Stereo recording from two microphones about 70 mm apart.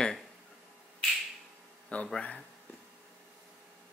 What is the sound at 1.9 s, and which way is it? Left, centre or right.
Speech, centre.